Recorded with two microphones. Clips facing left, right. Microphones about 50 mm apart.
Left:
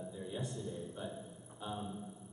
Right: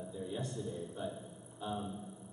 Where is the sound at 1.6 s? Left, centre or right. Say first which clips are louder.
Right 3 dB; centre.